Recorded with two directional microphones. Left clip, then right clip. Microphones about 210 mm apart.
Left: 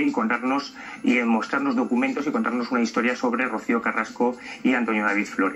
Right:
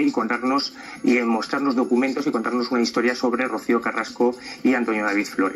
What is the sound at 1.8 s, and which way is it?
Speech, 35° right (ahead or behind).